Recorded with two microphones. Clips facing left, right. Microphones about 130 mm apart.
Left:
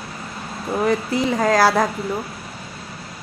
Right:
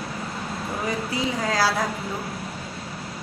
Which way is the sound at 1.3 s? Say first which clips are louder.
Left 8 dB; 55° left (ahead or behind).